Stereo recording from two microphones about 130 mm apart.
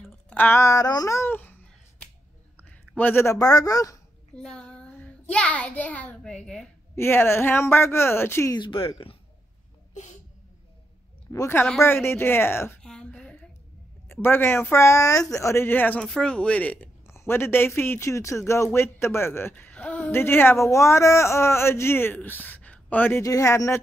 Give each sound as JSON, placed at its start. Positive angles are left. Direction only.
{"t": 0.3, "sound": "speech", "side_deg": 15}
{"t": 3.0, "sound": "speech", "side_deg": 15}
{"t": 4.4, "sound": "a child's voice", "side_deg": 5}
{"t": 7.0, "sound": "speech", "side_deg": 20}
{"t": 8.5, "sound": "speech", "side_deg": 40}
{"t": 11.3, "sound": "speech", "side_deg": 20}
{"t": 12.8, "sound": "a sound", "side_deg": 5}
{"t": 14.0, "sound": "speech", "side_deg": 15}